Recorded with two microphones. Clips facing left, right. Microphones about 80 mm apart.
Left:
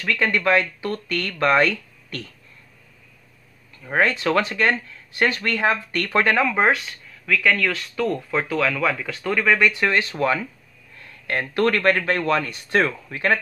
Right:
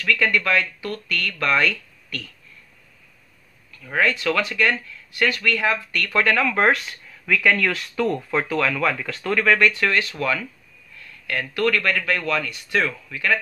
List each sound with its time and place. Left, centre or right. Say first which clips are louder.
0.0 s speech: even; left
3.7 s speech: left 1 dB; left
6.5 s speech: even; centre
6.9 s speech: even; centre; by 13.4 s left